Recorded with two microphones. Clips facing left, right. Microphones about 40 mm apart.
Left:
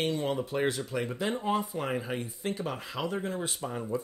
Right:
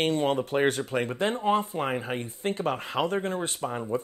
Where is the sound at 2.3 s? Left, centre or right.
Right.